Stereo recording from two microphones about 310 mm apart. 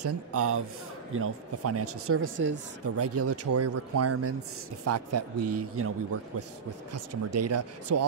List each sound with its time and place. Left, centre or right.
0.0 s speech: right
6.9 s speech: right